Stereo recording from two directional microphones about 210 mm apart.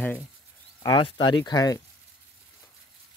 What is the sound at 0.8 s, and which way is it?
Speech, 20° left (ahead or behind).